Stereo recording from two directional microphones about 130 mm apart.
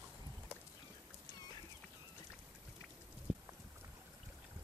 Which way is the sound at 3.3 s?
5° right (ahead or behind).